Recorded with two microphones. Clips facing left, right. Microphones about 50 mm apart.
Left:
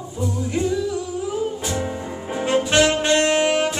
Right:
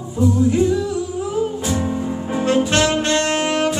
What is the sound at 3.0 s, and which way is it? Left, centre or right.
Saxophone, centre.